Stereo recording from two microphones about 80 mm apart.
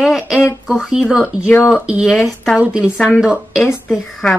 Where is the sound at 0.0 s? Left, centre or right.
Centre.